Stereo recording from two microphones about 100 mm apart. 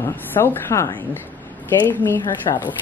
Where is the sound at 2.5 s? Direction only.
45° left (ahead or behind).